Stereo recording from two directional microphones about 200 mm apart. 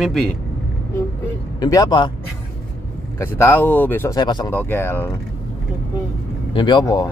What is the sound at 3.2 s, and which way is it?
Speech, 10° left (ahead or behind).